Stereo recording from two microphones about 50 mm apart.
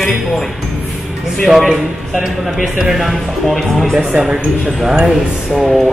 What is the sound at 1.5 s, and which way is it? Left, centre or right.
Speech, centre.